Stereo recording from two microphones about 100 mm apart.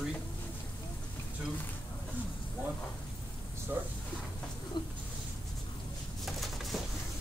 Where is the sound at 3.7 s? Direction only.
20° right (ahead or behind).